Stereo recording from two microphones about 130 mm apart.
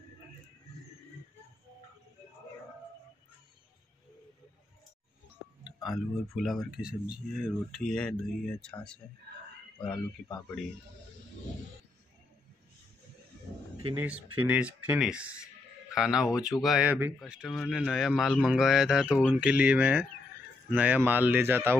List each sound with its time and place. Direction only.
5.6 s speech: 5° right (ahead or behind)
7.8 s speech: 5° left (ahead or behind)
13.9 s speech: 10° right (ahead or behind)